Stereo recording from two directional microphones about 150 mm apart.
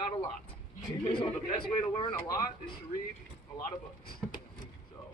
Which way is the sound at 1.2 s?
35° left (ahead or behind).